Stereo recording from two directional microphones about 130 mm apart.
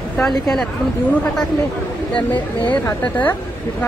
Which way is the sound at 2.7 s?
10° left (ahead or behind).